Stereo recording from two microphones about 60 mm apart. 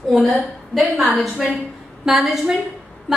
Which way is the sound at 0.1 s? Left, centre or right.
Centre.